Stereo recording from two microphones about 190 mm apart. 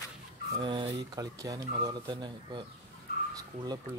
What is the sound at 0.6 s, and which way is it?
Speech, 25° right (ahead or behind).